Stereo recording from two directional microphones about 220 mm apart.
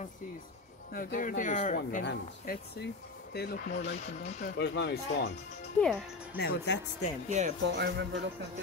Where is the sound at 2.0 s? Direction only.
50° left (ahead or behind).